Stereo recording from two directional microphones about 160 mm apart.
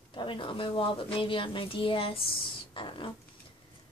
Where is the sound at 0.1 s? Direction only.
30° left (ahead or behind).